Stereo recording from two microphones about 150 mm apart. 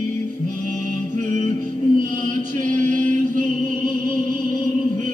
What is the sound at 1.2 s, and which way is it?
Music, 55° right (ahead or behind).